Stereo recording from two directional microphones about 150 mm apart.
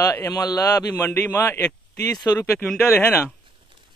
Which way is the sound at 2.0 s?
25° left (ahead or behind).